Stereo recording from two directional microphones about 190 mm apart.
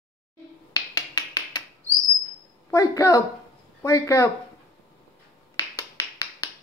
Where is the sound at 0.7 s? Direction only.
20° left (ahead or behind).